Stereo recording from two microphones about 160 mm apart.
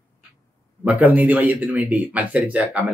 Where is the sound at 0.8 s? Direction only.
10° right (ahead or behind).